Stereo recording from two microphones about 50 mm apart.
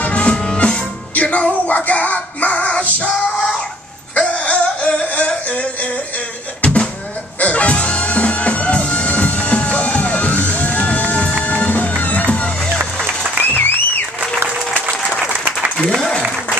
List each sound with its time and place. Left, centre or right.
0.0 s music: left
4.3 s music: left
12.6 s music: right
13.4 s applause: left
15.9 s applause: centre